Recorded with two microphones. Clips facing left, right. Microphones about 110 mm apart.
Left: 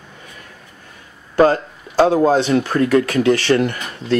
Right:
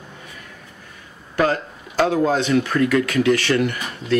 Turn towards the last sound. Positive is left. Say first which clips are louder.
# left 2 dB
turn(degrees=30)  # may be behind; listen again after turning